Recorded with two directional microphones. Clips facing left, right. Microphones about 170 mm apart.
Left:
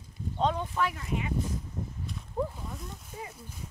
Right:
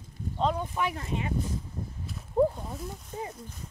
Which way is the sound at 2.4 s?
30° right (ahead or behind).